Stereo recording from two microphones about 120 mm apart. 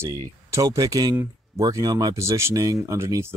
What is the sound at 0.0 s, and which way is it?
Speech, 25° right (ahead or behind).